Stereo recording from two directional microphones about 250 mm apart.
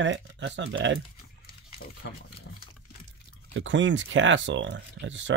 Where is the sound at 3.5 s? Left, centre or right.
Right.